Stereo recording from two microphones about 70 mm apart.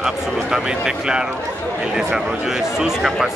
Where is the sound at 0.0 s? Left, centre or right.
Centre.